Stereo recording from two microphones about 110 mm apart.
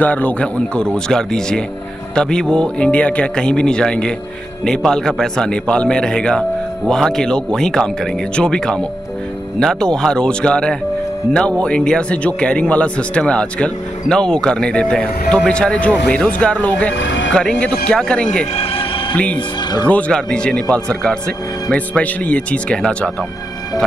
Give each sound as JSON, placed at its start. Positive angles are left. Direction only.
{"t": 0.0, "sound": "speech", "side_deg": 15}
{"t": 18.5, "sound": "a sound", "side_deg": 65}
{"t": 19.1, "sound": "speech", "side_deg": 10}